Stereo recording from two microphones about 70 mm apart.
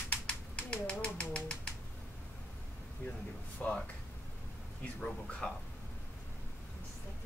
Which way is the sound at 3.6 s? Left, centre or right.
Centre.